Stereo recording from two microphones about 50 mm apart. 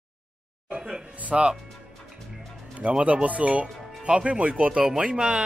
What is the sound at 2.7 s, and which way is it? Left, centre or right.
Speech, right.